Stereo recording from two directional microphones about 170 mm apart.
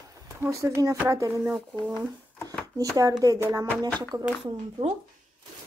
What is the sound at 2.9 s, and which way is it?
A woman's voice, 20° right (ahead or behind).